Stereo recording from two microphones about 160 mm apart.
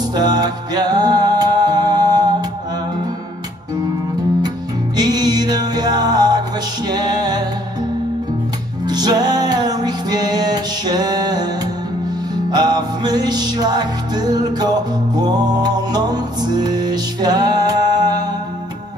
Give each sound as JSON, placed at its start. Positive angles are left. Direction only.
{"t": 0.1, "sound": "music", "side_deg": -25}
{"t": 4.9, "sound": "music", "side_deg": -25}
{"t": 8.8, "sound": "music", "side_deg": -25}
{"t": 12.4, "sound": "music", "side_deg": -25}